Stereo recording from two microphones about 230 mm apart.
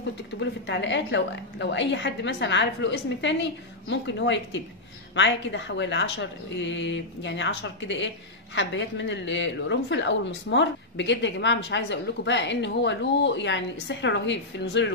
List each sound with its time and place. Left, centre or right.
0.4 s a woman's voice: left